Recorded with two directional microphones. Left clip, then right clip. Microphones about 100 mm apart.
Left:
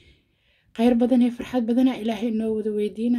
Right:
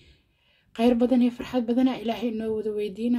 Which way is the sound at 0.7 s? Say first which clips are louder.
Left 2 dB; 25° left (ahead or behind).